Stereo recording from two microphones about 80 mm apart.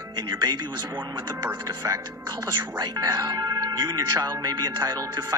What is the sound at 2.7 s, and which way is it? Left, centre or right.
Speech, right.